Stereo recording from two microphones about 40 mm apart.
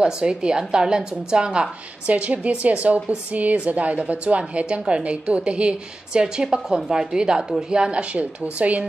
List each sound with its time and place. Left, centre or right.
0.0 s a woman's voice: right
7.7 s a woman's voice: right